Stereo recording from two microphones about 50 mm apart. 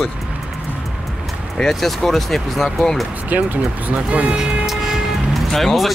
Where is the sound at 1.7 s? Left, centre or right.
Centre.